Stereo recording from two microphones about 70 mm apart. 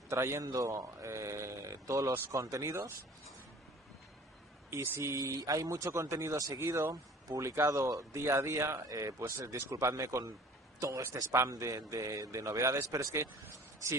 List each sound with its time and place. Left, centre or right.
0.1 s speech: right
4.8 s speech: right
5.1 s speech: right
6.3 s speech: right
6.8 s speech: right